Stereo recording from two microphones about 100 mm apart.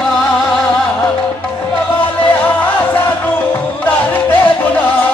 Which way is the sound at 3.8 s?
20° left (ahead or behind).